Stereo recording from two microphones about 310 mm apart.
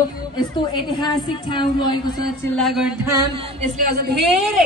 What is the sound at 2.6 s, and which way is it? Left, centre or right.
Speech, centre.